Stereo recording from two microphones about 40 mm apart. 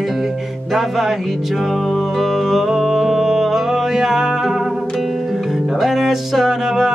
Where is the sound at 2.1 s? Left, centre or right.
Centre.